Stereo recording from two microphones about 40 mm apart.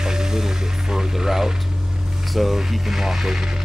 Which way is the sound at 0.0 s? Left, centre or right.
Centre.